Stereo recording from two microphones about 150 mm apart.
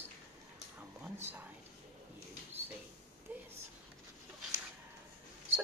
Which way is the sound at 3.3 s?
10° right (ahead or behind).